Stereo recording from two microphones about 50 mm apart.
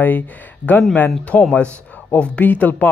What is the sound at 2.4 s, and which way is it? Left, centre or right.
Speech, left.